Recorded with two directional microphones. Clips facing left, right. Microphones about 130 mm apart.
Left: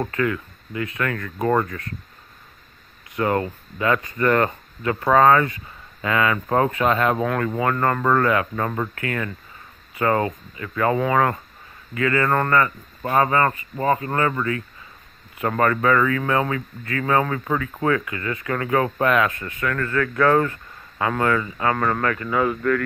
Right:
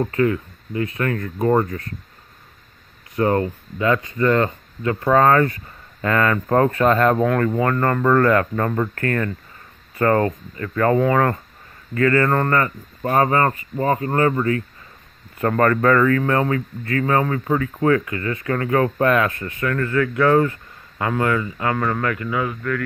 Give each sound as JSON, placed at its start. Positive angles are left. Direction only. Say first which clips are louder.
{"t": 0.1, "sound": "speech", "louder": "right 4 dB", "side_deg": -30}
{"t": 3.2, "sound": "speech", "louder": "right 3 dB", "side_deg": -35}
{"t": 5.1, "sound": "speech", "louder": "even", "side_deg": -40}
{"t": 6.1, "sound": "speech", "louder": "right 2 dB", "side_deg": 15}
{"t": 7.2, "sound": "speech", "louder": "right 3 dB", "side_deg": 20}
{"t": 8.9, "sound": "speech", "louder": "right 5 dB", "side_deg": -45}
{"t": 9.9, "sound": "speech", "louder": "right 3 dB", "side_deg": 15}
{"t": 11.9, "sound": "speech", "louder": "right 3 dB", "side_deg": -40}
{"t": 15.3, "sound": "speech", "louder": "right 3 dB", "side_deg": 15}
{"t": 16.1, "sound": "speech", "louder": "right 3 dB", "side_deg": -40}
{"t": 21.4, "sound": "speech", "louder": "even", "side_deg": 25}
{"t": 21.7, "sound": "speech", "louder": "even", "side_deg": -10}
{"t": 22.3, "sound": "speech", "louder": "left 3 dB", "side_deg": 40}